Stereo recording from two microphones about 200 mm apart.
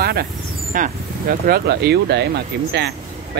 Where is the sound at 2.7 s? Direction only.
55° right (ahead or behind).